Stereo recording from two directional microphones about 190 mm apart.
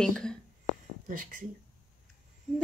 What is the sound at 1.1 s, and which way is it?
Speech, 45° right (ahead or behind).